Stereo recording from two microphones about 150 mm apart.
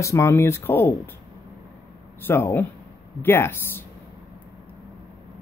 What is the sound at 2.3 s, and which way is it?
Speech, 15° left (ahead or behind).